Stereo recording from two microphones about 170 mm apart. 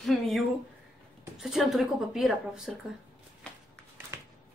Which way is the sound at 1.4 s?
5° right (ahead or behind).